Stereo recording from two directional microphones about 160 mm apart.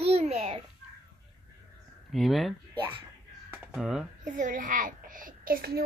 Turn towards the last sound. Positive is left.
turn(degrees=-70)  # may be behind; listen again after turning